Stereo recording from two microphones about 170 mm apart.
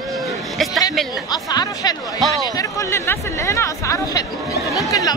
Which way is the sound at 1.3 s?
25° left (ahead or behind).